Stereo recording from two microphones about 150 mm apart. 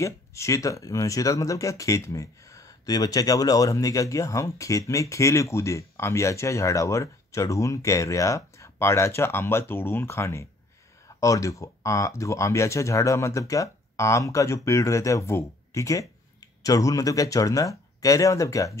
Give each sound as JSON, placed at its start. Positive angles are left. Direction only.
{"t": 0.0, "sound": "speech", "side_deg": 20}